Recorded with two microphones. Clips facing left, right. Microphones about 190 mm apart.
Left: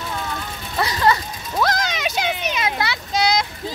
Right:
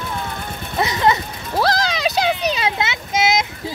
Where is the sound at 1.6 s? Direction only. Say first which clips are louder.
Right 3 dB; 35° right (ahead or behind).